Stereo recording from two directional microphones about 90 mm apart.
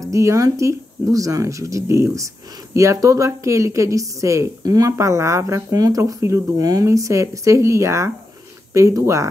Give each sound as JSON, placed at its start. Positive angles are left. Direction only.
{"t": 0.0, "sound": "speech", "side_deg": -35}